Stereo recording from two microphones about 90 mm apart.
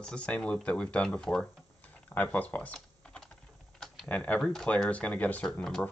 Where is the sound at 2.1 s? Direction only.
20° left (ahead or behind).